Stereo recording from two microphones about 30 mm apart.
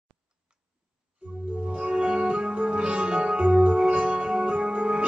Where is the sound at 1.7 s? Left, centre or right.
Right.